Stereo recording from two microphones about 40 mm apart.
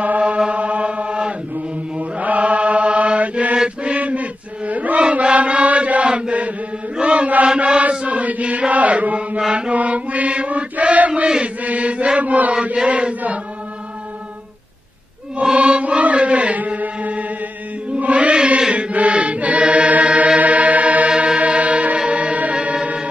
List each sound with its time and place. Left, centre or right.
0.5 s chant: right
2.0 s mantra: right
3.8 s chant: right
9.5 s mantra: right
9.8 s chant: right
12.8 s mantra: right
15.5 s chant: right
20.3 s music: right